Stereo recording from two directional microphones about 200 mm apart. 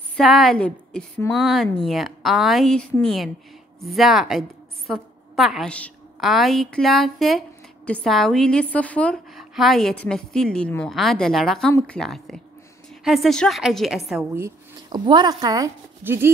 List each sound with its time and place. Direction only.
0.1 s a woman's voice: centre (ahead or behind)
14.3 s speech: 15° right (ahead or behind)